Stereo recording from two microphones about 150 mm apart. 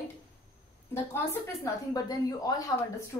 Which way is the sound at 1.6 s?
25° left (ahead or behind).